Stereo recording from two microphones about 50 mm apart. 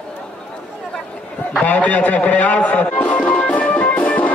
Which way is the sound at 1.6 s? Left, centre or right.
Left.